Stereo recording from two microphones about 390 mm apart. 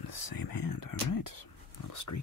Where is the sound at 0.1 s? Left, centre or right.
Left.